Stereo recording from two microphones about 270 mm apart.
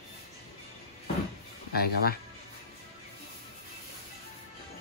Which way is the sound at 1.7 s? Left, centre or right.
Left.